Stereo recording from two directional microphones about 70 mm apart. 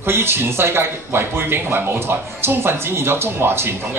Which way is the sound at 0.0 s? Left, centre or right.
Right.